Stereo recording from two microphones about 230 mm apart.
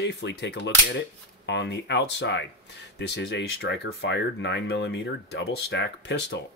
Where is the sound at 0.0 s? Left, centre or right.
Left.